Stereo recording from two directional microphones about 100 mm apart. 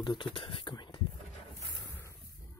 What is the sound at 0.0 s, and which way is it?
Speech, 50° left (ahead or behind).